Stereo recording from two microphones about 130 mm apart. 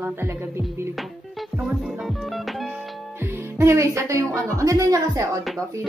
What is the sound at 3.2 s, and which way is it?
Music, 20° right (ahead or behind).